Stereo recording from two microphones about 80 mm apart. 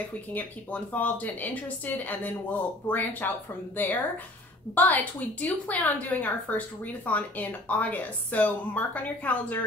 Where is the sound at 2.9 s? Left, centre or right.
Left.